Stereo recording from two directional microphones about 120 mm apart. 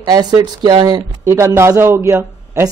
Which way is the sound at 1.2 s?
25° right (ahead or behind).